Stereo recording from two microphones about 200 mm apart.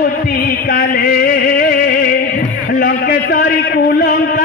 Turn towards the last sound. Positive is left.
turn(degrees=45)  # may be behind; listen again after turning